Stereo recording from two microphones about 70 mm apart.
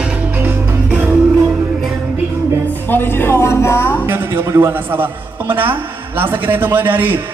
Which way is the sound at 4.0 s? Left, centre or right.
Right.